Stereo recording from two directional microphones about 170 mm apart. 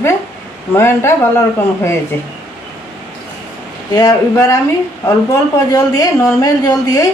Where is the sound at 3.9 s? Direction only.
20° left (ahead or behind).